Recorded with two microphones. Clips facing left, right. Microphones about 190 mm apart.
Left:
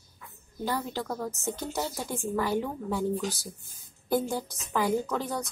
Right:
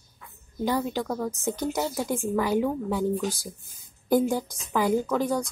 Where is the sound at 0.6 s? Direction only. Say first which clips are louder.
Right 5 dB; 15° right (ahead or behind).